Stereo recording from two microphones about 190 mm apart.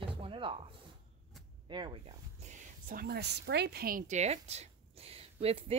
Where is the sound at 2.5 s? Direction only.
50° right (ahead or behind).